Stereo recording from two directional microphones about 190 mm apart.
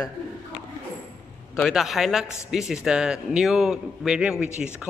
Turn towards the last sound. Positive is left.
turn(degrees=-5)  # may be behind; listen again after turning